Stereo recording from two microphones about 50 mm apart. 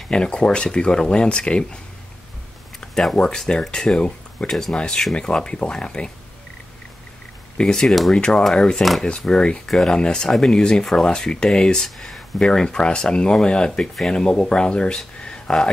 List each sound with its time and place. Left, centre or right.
0.1 s speech: centre
2.9 s a sound: centre
3.3 s speech: centre
4.5 s speech: centre
7.5 s speech: centre
8.1 s speech: centre
12.4 s speech: centre
15.2 s a sound: centre